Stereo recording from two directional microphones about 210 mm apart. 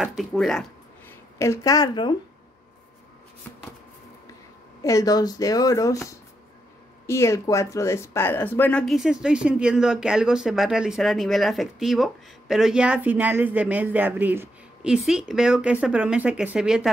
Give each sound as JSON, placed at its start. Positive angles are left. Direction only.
{"t": 0.0, "sound": "speech", "side_deg": 0}
{"t": 1.4, "sound": "speech", "side_deg": 15}
{"t": 4.8, "sound": "speech", "side_deg": 15}